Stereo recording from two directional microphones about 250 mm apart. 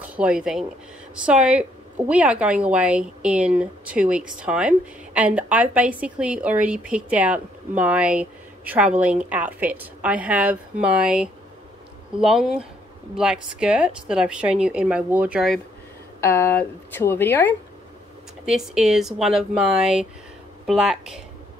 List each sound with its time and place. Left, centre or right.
0.1 s a woman's voice: centre
16.2 s speech: centre
18.4 s a woman's voice: centre